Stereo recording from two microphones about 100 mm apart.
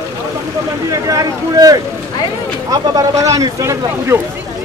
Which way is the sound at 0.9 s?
35° right (ahead or behind).